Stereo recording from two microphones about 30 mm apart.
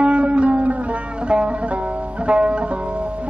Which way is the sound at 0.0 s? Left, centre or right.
Right.